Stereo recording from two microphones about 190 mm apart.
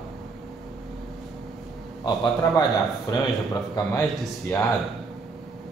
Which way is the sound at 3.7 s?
15° left (ahead or behind).